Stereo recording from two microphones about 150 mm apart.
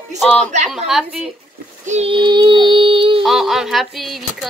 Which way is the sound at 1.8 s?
45° right (ahead or behind).